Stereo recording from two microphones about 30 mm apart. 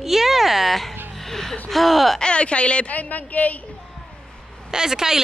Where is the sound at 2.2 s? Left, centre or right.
Left.